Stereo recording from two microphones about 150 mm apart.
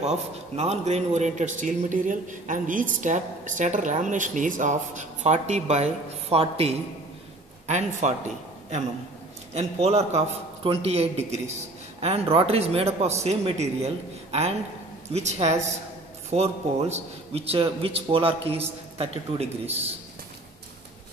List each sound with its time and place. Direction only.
0.0 s a man's voice: 45° right (ahead or behind)
9.5 s a man's voice: 45° right (ahead or behind)